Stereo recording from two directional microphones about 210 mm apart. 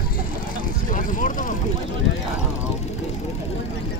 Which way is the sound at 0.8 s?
40° left (ahead or behind).